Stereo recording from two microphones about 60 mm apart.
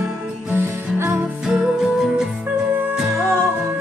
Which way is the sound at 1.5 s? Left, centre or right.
Centre.